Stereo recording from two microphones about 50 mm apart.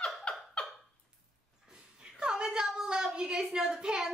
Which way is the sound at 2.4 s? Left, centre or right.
Centre.